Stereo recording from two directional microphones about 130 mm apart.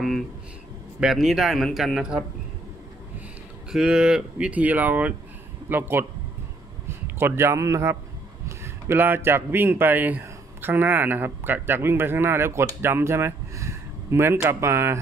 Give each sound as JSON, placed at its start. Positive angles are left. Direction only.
{"t": 1.0, "sound": "speech", "side_deg": 0}
{"t": 3.7, "sound": "speech", "side_deg": -5}
{"t": 7.2, "sound": "speech", "side_deg": -20}